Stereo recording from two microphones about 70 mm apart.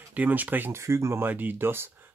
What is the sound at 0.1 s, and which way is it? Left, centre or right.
Speech, right.